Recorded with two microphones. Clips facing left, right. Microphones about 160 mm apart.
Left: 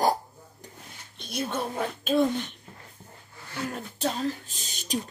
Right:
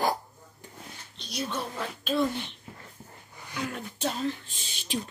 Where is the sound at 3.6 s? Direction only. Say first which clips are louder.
Left 1 dB; 40° left (ahead or behind).